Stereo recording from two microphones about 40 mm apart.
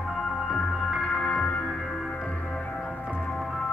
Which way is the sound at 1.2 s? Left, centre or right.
Left.